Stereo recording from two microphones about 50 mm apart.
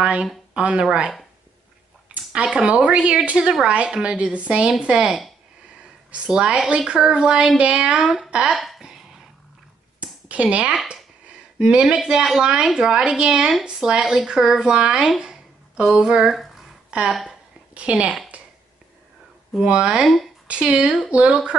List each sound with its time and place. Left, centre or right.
0.0 s a woman's voice: centre
2.1 s a sound: right
2.6 s a woman's voice: right
6.1 s a woman's voice: centre
8.0 s a woman's voice: centre
8.5 s a sound: centre
10.2 s a woman's voice: right
15.0 s a sound: centre
16.2 s speech: centre
17.7 s a woman's voice: right
18.3 s a sound: right
19.6 s a woman's voice: right